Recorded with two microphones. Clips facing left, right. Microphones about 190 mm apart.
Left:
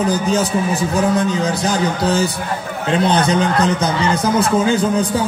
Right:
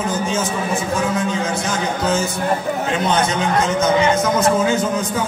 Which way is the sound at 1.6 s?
35° left (ahead or behind).